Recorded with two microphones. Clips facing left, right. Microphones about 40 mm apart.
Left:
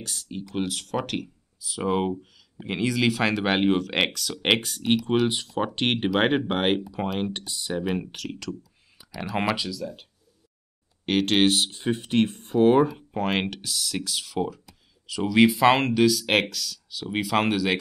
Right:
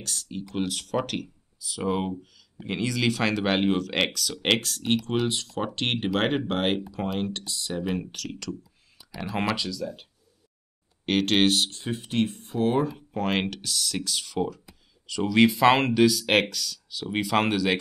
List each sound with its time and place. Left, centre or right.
0.0 s speech: centre
11.1 s speech: centre
11.8 s speech: centre
12.8 s speech: centre